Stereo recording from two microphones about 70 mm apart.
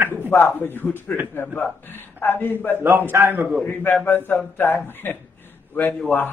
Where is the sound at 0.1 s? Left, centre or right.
Left.